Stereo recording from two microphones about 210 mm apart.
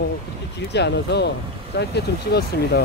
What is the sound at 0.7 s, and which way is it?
Speech, 55° left (ahead or behind).